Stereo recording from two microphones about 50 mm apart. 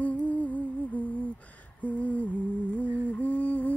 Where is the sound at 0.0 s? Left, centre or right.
Left.